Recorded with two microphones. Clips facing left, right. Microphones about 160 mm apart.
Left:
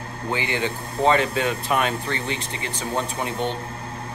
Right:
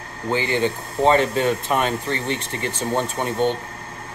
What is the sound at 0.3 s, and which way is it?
Speech, 35° right (ahead or behind).